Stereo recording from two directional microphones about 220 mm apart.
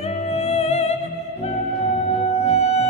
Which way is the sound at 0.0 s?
30° left (ahead or behind).